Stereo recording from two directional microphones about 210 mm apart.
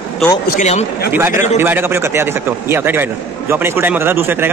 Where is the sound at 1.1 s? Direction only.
10° right (ahead or behind).